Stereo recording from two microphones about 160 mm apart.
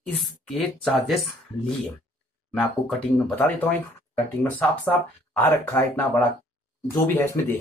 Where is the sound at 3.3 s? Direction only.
10° left (ahead or behind).